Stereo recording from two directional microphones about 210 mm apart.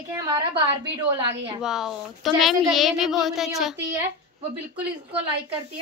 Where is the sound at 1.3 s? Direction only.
25° right (ahead or behind).